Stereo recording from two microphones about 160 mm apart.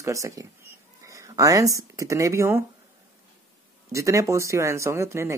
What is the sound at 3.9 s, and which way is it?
Speech, 20° right (ahead or behind).